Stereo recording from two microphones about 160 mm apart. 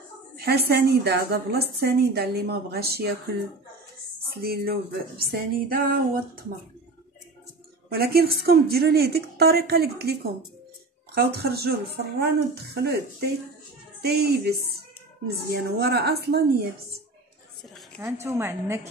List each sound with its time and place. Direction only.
0.4 s a woman's voice: 90° right
4.4 s speech: 75° right (ahead or behind)
7.9 s a woman's voice: 80° right
11.1 s a woman's voice: 80° right
15.5 s speech: 90° right
18.0 s speech: 15° right (ahead or behind)